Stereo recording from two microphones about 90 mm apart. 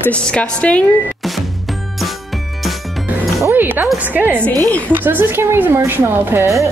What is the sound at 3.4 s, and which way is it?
A woman's voice, 20° right (ahead or behind).